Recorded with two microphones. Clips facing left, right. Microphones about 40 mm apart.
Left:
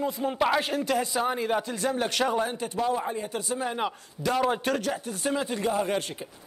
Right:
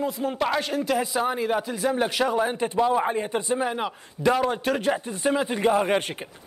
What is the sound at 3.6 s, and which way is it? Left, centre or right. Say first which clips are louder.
A man's voice: right 2 dB; centre.